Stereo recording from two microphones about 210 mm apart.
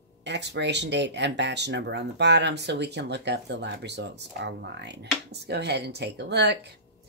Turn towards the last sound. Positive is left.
turn(degrees=-50)  # may be behind; listen again after turning